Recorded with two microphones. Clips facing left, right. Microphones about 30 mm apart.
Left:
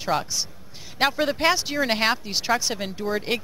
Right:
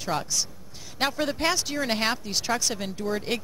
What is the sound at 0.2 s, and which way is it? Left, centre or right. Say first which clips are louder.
Speech: left 1 dB; centre.